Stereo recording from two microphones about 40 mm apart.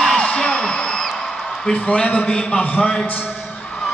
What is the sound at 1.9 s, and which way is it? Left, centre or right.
Speech, left.